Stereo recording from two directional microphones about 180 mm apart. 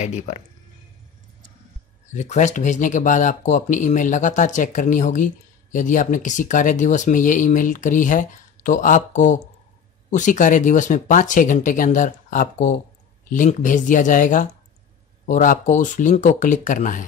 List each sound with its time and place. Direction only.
0.0 s speech: 40° left (ahead or behind)
2.1 s speech: 40° left (ahead or behind)